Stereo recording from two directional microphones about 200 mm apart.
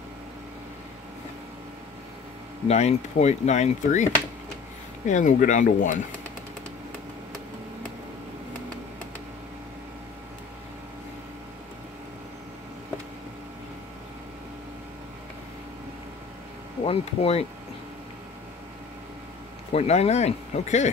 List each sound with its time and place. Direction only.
2.7 s speech: 35° left (ahead or behind)
16.8 s speech: 30° left (ahead or behind)
19.7 s speech: 30° left (ahead or behind)